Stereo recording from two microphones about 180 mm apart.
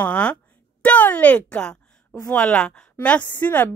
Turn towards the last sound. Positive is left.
turn(degrees=10)  # may be behind; listen again after turning